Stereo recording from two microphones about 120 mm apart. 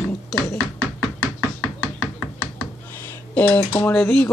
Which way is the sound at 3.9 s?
10° left (ahead or behind).